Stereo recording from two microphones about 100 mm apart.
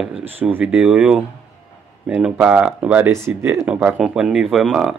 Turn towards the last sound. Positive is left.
turn(degrees=-5)  # may be behind; listen again after turning